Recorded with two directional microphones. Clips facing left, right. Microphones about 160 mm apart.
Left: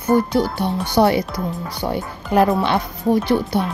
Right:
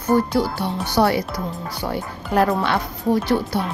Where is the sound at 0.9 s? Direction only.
20° left (ahead or behind).